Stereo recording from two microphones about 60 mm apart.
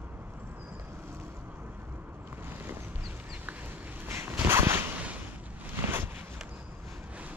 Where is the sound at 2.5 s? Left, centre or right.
Right.